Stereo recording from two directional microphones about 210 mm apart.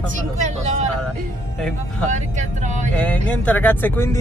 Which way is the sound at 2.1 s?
35° right (ahead or behind).